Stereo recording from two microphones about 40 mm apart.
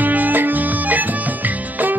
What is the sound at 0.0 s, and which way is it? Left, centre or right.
Music, right.